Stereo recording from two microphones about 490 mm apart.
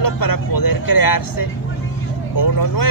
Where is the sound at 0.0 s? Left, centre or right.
Left.